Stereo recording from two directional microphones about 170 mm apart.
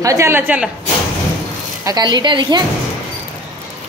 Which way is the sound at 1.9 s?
25° right (ahead or behind).